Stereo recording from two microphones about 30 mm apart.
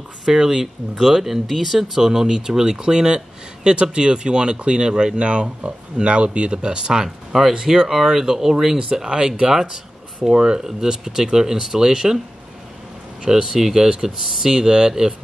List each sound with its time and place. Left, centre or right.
0.2 s speech: centre
10.6 s speech: centre
13.2 s speech: right